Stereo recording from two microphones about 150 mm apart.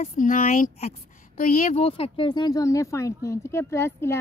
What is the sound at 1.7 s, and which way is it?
Speech, 40° left (ahead or behind).